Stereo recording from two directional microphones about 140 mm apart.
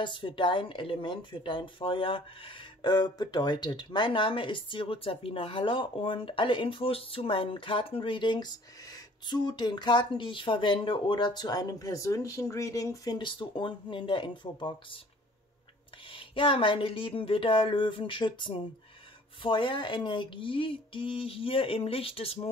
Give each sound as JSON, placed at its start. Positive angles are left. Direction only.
{"t": 0.0, "sound": "speech", "side_deg": 35}
{"t": 16.1, "sound": "speech", "side_deg": 40}